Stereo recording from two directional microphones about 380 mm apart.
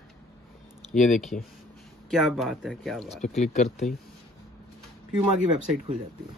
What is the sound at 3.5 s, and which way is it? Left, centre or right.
Speech, centre.